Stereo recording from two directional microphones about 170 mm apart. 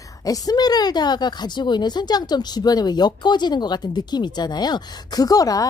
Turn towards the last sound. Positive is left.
turn(degrees=20)  # may be behind; listen again after turning